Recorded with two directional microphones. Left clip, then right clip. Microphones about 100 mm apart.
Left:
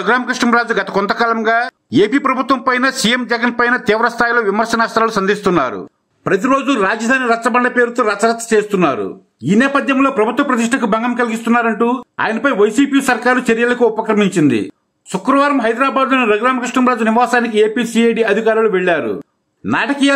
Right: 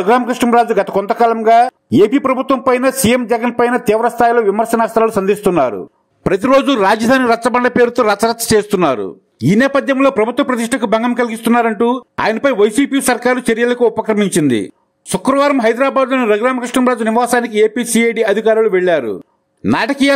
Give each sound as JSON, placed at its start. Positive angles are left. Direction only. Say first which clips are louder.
{"t": 0.1, "sound": "a man's voice", "louder": "right 2 dB", "side_deg": -30}
{"t": 2.0, "sound": "speech", "louder": "right 2 dB", "side_deg": 45}
{"t": 2.3, "sound": "speech", "louder": "even", "side_deg": -25}
{"t": 2.6, "sound": "a man's voice", "louder": "right 1 dB", "side_deg": -45}
{"t": 4.6, "sound": "a man's voice", "louder": "right 1 dB", "side_deg": -35}
{"t": 6.3, "sound": "a man's voice", "louder": "right 3 dB", "side_deg": -90}
{"t": 10.0, "sound": "a man's voice", "louder": "right 1 dB", "side_deg": -75}
{"t": 15.1, "sound": "a man's voice", "louder": "right 1 dB", "side_deg": -70}